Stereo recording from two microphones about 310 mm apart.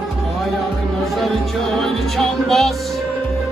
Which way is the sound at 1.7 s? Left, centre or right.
Centre.